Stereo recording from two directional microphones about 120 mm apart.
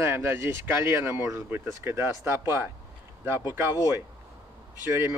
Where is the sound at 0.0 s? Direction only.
20° right (ahead or behind).